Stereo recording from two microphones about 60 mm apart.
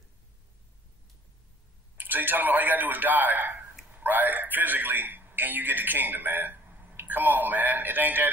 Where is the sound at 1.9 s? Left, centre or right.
Right.